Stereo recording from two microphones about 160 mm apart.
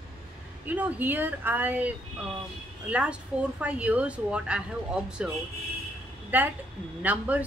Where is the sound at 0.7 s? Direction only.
10° right (ahead or behind).